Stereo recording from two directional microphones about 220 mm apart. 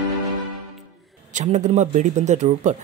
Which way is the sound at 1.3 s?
35° right (ahead or behind).